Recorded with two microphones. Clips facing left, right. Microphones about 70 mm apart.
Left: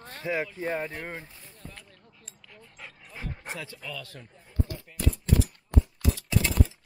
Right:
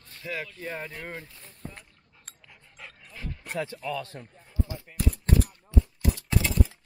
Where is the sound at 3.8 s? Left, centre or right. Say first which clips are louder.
Right 7 dB; right.